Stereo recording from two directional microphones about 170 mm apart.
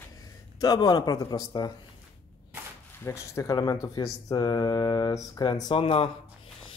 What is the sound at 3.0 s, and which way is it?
Speech, 15° left (ahead or behind).